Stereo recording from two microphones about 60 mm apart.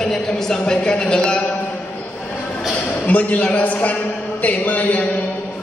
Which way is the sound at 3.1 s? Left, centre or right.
Left.